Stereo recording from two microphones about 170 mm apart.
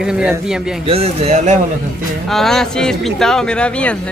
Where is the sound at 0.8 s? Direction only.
35° right (ahead or behind).